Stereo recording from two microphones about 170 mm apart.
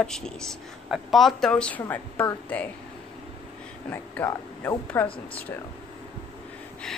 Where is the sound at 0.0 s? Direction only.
5° left (ahead or behind).